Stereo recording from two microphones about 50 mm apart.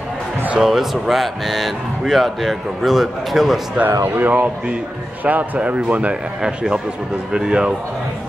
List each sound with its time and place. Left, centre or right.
0.6 s speech: centre
4.2 s speech: right
6.4 s a man's voice: centre